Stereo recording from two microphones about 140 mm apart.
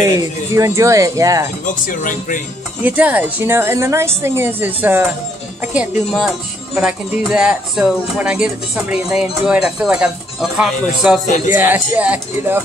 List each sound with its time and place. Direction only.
0.0 s speech: 25° right (ahead or behind)
1.9 s speech: 70° left (ahead or behind)
2.8 s speech: 10° right (ahead or behind)
11.2 s music: 60° left (ahead or behind)
11.5 s speech: 15° right (ahead or behind)